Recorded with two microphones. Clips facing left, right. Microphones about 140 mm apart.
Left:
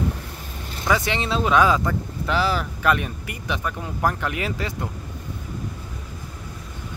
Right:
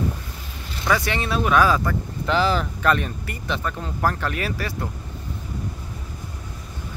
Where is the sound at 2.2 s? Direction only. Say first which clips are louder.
Right 2 dB; 5° left (ahead or behind); by 4.7 s 20° left (ahead or behind).